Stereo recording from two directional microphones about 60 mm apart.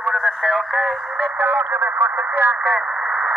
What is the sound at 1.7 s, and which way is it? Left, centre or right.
Speech, right.